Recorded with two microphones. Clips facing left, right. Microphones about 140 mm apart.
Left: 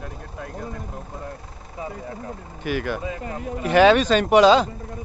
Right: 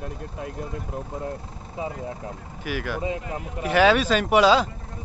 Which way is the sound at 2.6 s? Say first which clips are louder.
Left 2 dB; 5° right (ahead or behind).